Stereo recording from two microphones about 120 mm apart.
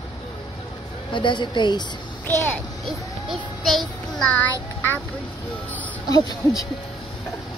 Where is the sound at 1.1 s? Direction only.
40° left (ahead or behind).